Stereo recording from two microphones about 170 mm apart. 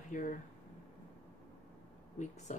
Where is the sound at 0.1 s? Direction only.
50° left (ahead or behind).